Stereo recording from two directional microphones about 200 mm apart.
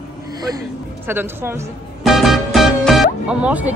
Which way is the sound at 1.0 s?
10° right (ahead or behind).